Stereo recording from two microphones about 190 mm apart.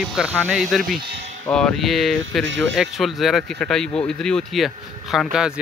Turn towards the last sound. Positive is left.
turn(degrees=-5)  # may be behind; listen again after turning